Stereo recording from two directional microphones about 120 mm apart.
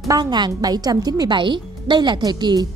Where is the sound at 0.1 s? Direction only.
35° right (ahead or behind).